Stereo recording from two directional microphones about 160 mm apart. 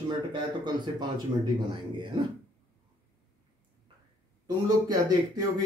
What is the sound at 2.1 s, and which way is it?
Speech, 30° right (ahead or behind).